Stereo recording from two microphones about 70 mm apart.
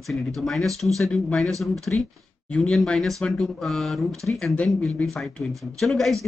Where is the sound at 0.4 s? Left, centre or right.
Centre.